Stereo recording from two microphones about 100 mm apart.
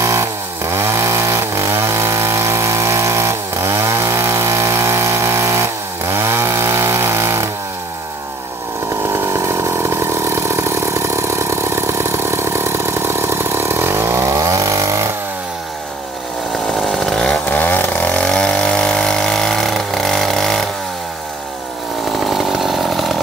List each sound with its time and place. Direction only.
0.0 s chainsaw: 30° right (ahead or behind)
9.1 s vehicle: 25° right (ahead or behind)
16.7 s chainsaw: centre (ahead or behind)
17.5 s chainsaw: 15° left (ahead or behind)
22.1 s chainsaw: centre (ahead or behind)